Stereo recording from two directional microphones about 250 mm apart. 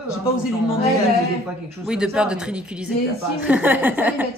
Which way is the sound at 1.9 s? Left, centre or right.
Centre.